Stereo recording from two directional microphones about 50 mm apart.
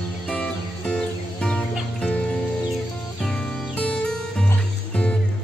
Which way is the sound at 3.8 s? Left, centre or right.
Centre.